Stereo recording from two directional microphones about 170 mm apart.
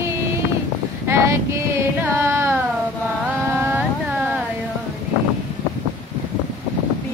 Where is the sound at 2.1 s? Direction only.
15° right (ahead or behind).